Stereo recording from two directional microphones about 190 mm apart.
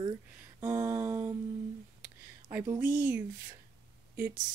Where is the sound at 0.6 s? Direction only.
15° right (ahead or behind).